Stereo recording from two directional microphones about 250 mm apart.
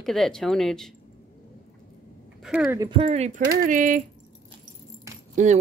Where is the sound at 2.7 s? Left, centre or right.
Centre.